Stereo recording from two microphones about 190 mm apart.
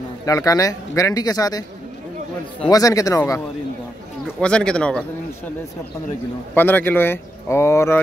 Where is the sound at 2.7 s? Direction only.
20° left (ahead or behind).